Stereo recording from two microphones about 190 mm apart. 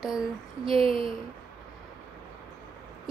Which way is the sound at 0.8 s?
30° right (ahead or behind).